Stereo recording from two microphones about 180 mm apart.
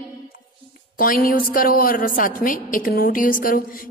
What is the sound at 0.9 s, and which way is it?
Speech, 50° left (ahead or behind).